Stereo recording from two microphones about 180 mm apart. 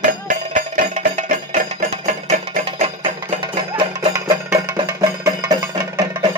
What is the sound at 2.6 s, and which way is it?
Music, 30° right (ahead or behind).